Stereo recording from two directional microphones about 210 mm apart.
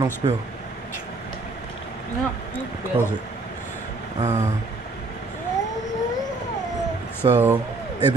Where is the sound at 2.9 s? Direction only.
25° right (ahead or behind).